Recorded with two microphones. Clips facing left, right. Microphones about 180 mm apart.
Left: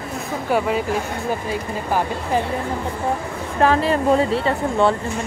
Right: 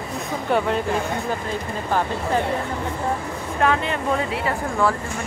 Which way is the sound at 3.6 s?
30° left (ahead or behind).